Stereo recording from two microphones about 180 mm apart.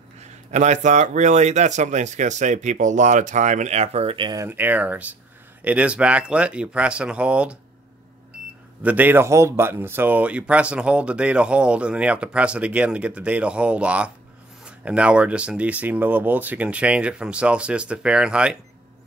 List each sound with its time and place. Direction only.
0.2 s a man's voice: 40° right (ahead or behind); by 4.5 s 25° right (ahead or behind)
4.5 s speech: 10° right (ahead or behind)
8.8 s speech: 10° right (ahead or behind)